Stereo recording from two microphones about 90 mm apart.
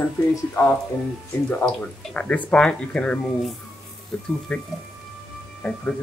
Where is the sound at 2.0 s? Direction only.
15° left (ahead or behind).